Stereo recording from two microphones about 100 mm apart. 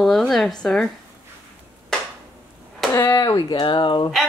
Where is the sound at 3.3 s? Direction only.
50° left (ahead or behind).